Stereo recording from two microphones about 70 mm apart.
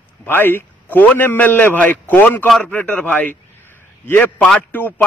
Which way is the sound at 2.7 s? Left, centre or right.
Left.